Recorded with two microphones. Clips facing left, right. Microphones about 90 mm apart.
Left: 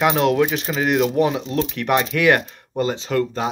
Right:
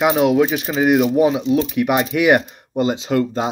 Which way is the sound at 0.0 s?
10° right (ahead or behind).